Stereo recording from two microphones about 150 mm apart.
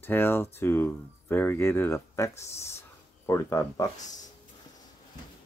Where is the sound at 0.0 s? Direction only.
15° left (ahead or behind).